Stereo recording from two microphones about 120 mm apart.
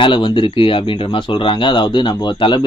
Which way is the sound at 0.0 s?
45° left (ahead or behind).